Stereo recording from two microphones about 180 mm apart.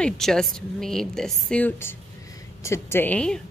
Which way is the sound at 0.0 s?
Centre (ahead or behind).